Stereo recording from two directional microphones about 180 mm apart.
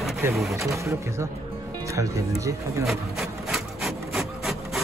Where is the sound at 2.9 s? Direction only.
Centre (ahead or behind).